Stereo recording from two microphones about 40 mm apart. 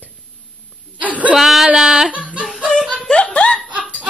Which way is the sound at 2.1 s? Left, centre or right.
Right.